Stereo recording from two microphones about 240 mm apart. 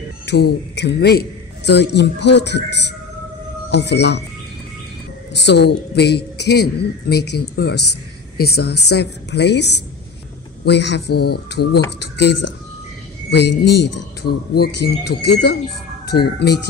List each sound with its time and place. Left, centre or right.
0.3 s a woman's voice: left
5.3 s a woman's voice: left
13.7 s speech: left
14.2 s a woman's voice: left